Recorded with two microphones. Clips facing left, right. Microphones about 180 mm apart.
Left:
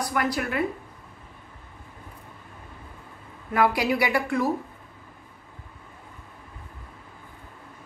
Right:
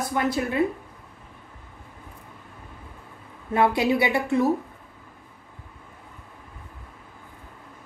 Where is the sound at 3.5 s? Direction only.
25° right (ahead or behind).